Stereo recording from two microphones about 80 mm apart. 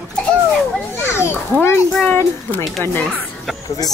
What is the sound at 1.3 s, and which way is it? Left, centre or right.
Speech, left.